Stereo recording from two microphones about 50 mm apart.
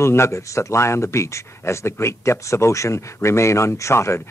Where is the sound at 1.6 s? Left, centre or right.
Left.